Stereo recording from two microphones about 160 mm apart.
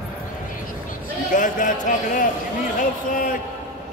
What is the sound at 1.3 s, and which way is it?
A man's voice, 55° left (ahead or behind).